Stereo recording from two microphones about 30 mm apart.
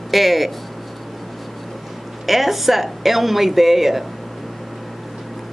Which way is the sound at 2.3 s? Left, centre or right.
Centre.